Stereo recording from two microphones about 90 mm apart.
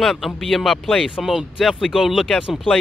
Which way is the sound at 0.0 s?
Centre (ahead or behind).